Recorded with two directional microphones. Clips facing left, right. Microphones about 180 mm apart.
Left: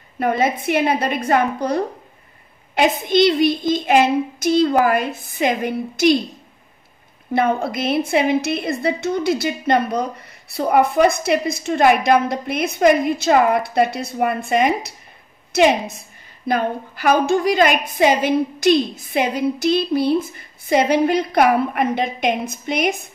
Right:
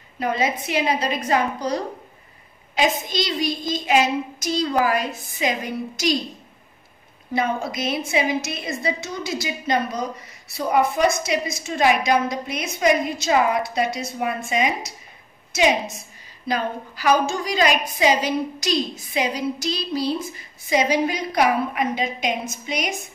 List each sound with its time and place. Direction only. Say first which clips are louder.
0.2 s a woman's voice: left 4 dB; 55° left (ahead or behind)
7.3 s a woman's voice: left 5 dB; 55° left (ahead or behind)